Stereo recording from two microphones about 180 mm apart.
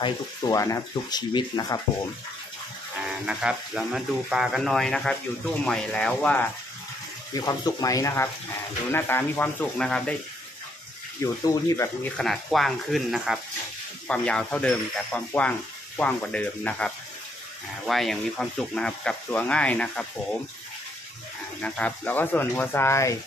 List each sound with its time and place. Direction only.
0.0 s speech: 20° left (ahead or behind)
3.3 s speech: 5° right (ahead or behind)
7.3 s speech: 20° left (ahead or behind); by 10.1 s 5° left (ahead or behind)
11.4 s speech: 15° left (ahead or behind)
12.2 s speech: centre (ahead or behind)
21.5 s speech: 5° left (ahead or behind)